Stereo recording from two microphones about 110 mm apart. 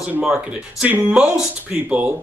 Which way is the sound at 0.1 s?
10° right (ahead or behind).